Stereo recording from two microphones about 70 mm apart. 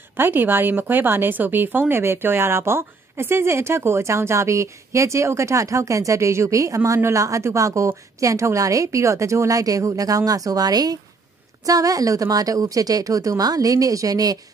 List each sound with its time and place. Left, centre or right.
0.1 s a woman's voice: right